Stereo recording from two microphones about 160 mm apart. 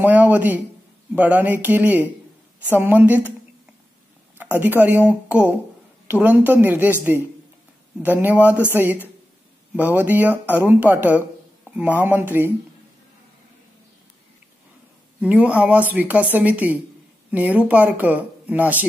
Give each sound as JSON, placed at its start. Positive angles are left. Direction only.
{"t": 0.0, "sound": "speech", "side_deg": -10}
{"t": 4.6, "sound": "speech", "side_deg": -10}
{"t": 15.1, "sound": "speech", "side_deg": -10}